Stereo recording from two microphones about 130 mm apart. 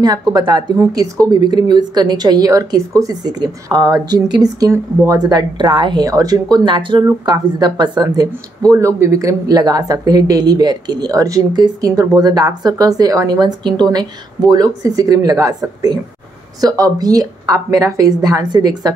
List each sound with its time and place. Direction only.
0.3 s a woman's voice: 35° right (ahead or behind)